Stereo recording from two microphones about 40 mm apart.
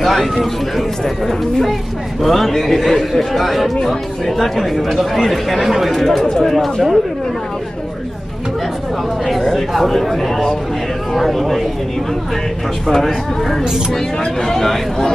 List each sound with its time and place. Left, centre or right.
0.0 s speech: centre
9.3 s speech: centre
12.8 s speech: centre